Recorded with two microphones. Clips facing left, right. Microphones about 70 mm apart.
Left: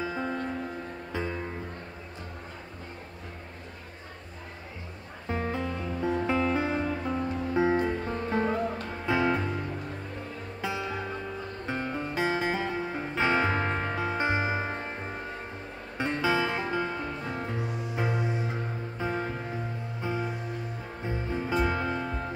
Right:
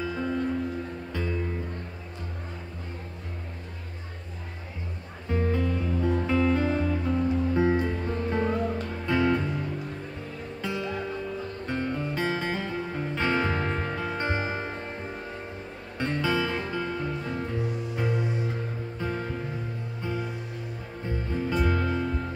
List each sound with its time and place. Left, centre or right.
0.0 s music: centre
5.3 s music: centre
10.6 s music: centre